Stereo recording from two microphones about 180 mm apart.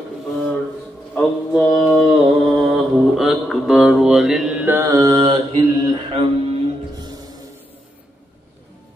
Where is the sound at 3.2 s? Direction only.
Centre (ahead or behind); by 7.2 s 20° right (ahead or behind).